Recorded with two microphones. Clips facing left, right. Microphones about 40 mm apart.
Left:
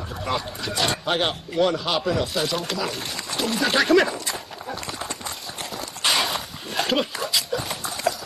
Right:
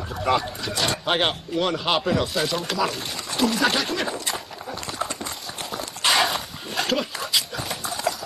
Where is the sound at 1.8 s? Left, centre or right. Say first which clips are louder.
Right 1 dB; centre.